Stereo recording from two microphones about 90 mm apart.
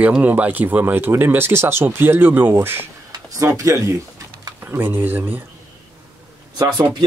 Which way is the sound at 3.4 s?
35° right (ahead or behind).